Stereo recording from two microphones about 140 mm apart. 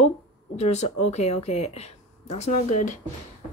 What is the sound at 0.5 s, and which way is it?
A woman's voice, 55° left (ahead or behind).